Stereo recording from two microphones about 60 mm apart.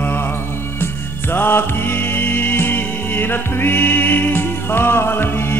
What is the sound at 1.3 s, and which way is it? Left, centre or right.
Music, left.